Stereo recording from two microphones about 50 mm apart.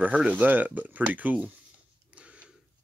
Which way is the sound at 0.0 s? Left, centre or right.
Right.